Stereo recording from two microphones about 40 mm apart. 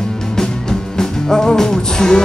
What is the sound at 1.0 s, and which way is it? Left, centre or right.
Music, centre.